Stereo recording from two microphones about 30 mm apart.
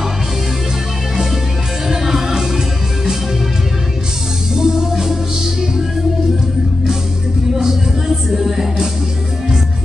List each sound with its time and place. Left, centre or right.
1.9 s music: centre
4.6 s music: right
8.1 s music: centre